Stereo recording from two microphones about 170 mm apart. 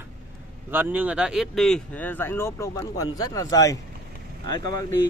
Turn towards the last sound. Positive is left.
turn(degrees=20)  # may be behind; listen again after turning